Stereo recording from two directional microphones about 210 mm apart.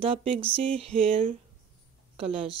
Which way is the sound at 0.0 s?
25° right (ahead or behind).